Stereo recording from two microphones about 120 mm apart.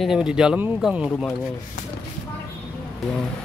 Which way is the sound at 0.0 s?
5° right (ahead or behind).